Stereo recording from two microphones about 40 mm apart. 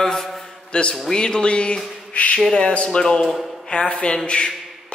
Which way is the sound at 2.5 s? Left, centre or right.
Left.